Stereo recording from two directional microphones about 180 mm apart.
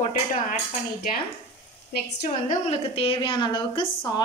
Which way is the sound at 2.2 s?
35° left (ahead or behind).